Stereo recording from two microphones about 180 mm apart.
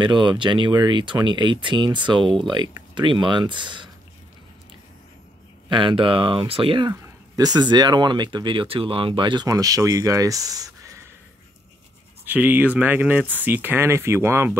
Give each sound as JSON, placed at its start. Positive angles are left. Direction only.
{"t": 0.0, "sound": "speech", "side_deg": -25}
{"t": 5.7, "sound": "speech", "side_deg": -25}
{"t": 12.3, "sound": "speech", "side_deg": -10}